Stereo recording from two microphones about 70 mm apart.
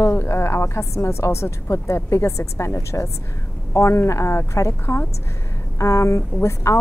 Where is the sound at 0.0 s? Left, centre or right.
Left.